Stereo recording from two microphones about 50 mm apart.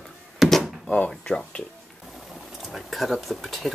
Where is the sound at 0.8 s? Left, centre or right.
Left.